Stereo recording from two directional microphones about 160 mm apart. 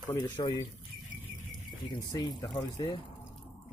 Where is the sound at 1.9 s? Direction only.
25° left (ahead or behind).